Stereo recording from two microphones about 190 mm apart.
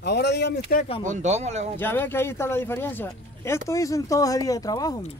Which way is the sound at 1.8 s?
10° left (ahead or behind).